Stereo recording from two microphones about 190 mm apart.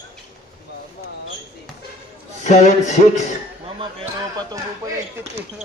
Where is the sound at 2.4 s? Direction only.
40° left (ahead or behind).